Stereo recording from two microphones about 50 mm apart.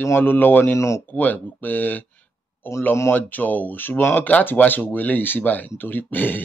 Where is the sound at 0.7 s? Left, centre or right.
Left.